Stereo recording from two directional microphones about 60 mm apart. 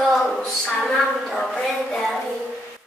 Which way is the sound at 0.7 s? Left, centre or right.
Centre.